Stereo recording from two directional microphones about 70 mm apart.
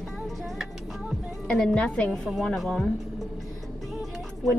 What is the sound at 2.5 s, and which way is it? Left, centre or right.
Speech, centre.